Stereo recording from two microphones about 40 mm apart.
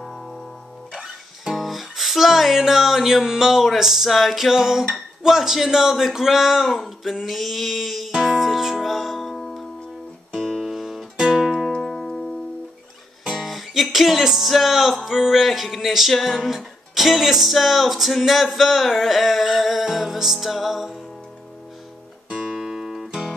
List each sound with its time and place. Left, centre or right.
0.0 s music: centre
0.9 s music: centre
8.1 s music: centre
11.8 s music: centre
12.1 s music: left
13.3 s music: centre
22.3 s music: centre
22.6 s guitar: centre